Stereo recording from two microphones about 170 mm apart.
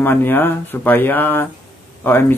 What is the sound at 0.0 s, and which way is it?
Speech, 10° left (ahead or behind).